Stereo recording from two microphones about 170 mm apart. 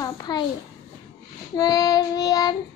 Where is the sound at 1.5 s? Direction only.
20° left (ahead or behind).